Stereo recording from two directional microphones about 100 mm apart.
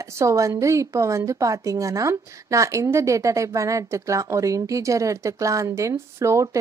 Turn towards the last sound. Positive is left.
turn(degrees=-30)  # may be behind; listen again after turning